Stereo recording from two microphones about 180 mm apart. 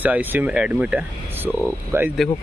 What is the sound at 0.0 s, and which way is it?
Speech, 10° right (ahead or behind).